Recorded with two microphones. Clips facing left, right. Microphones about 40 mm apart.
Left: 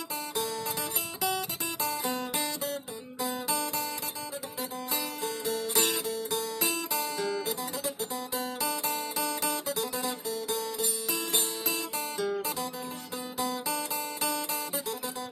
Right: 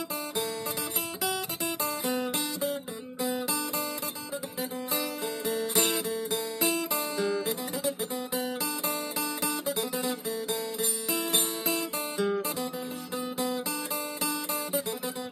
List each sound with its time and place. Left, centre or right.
1.3 s guitar: centre
5.4 s music: right
6.9 s guitar: centre
8.0 s music: right
9.2 s music: centre
11.6 s guitar: right